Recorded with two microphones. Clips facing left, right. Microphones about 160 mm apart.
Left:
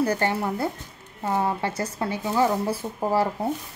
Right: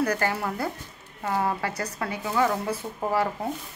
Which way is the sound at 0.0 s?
25° left (ahead or behind).